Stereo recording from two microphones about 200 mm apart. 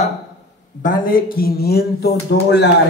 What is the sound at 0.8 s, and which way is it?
Speech, 45° left (ahead or behind).